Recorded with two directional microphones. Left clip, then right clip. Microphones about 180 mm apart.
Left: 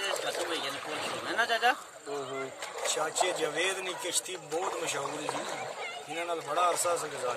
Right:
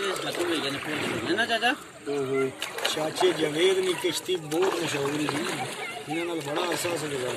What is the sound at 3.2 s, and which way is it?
Speech, 20° right (ahead or behind).